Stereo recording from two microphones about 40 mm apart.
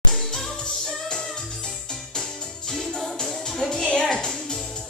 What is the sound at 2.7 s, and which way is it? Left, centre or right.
Music, centre.